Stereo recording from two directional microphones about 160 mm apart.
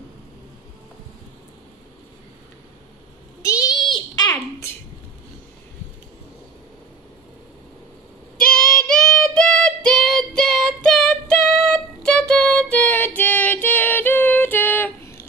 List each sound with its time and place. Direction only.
3.4 s child singing: 20° left (ahead or behind)
8.5 s female singing: 5° left (ahead or behind)